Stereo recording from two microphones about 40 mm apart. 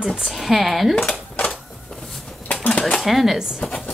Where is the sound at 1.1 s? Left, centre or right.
Left.